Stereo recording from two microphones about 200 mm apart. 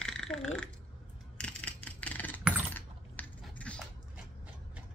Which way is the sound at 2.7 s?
5° left (ahead or behind).